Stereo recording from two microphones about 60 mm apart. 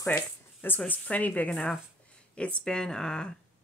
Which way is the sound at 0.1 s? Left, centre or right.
Left.